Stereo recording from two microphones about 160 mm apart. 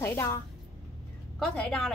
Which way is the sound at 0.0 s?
15° left (ahead or behind).